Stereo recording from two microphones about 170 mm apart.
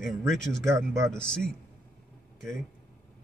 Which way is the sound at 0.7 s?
15° right (ahead or behind).